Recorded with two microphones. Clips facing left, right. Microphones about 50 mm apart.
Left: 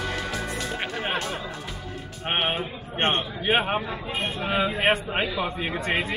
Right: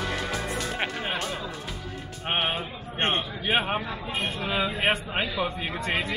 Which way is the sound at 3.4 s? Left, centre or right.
Centre.